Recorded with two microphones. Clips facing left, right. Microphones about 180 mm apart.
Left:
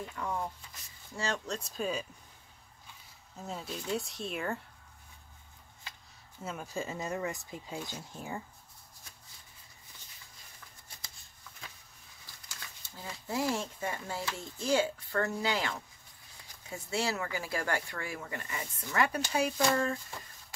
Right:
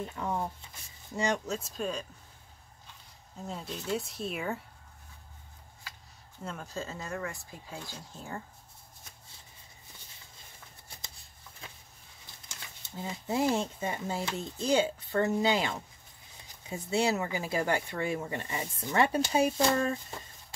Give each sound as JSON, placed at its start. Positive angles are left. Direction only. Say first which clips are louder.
{"t": 0.0, "sound": "speech", "louder": "right 3 dB", "side_deg": -25}
{"t": 1.5, "sound": "speech", "louder": "right 1 dB", "side_deg": 0}
{"t": 3.4, "sound": "speech", "louder": "right 2 dB", "side_deg": 0}
{"t": 6.4, "sound": "speech", "louder": "left 1 dB", "side_deg": 10}
{"t": 12.3, "sound": "speech", "louder": "right 1 dB", "side_deg": -20}